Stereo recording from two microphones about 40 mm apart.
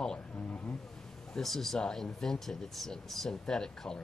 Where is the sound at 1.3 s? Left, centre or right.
Centre.